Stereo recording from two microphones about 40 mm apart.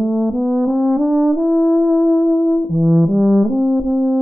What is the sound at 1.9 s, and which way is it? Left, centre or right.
Music, centre.